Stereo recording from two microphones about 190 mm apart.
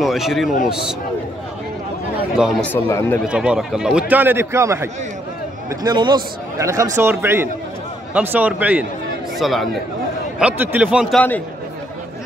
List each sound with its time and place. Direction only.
0.0 s a man's voice: centre (ahead or behind)
2.3 s a man's voice: centre (ahead or behind)
2.7 s speech: 15° left (ahead or behind)
3.3 s a man's voice: 5° right (ahead or behind)